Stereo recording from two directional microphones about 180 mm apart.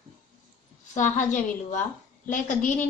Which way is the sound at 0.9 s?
40° left (ahead or behind).